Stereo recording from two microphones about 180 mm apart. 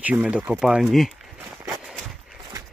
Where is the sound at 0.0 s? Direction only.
5° right (ahead or behind).